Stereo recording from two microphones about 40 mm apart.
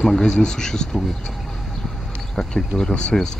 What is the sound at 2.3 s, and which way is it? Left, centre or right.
Speech, centre.